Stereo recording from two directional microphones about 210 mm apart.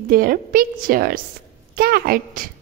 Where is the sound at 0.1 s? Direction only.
45° right (ahead or behind).